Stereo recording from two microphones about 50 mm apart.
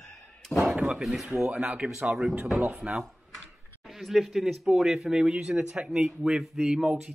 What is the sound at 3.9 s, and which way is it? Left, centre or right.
Speech, centre.